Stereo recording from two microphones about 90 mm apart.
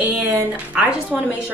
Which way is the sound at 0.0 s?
15° right (ahead or behind).